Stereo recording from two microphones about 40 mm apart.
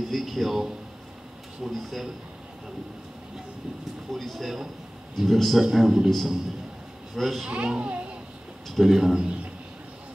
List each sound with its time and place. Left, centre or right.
0.1 s a man's voice: centre
4.1 s a man's voice: centre
5.6 s speech: centre
6.0 s a man's voice: centre
7.4 s a child's voice: right
8.6 s speech: centre
9.2 s a sound: right